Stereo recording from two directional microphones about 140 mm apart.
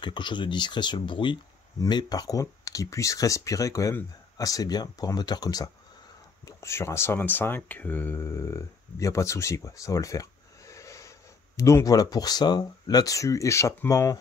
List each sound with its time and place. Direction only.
0.0 s speech: 35° left (ahead or behind)